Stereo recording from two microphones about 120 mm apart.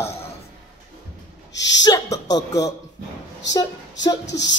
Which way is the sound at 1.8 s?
30° left (ahead or behind).